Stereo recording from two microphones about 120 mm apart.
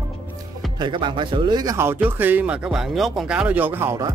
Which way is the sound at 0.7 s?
40° right (ahead or behind).